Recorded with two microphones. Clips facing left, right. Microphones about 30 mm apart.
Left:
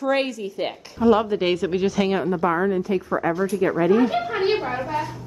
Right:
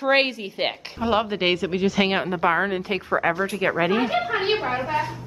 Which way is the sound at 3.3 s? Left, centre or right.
Right.